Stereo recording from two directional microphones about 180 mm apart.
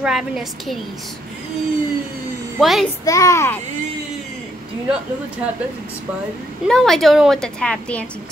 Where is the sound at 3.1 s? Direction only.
15° left (ahead or behind).